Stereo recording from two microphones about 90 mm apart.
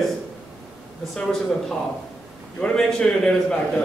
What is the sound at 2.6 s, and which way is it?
Speech, 10° left (ahead or behind).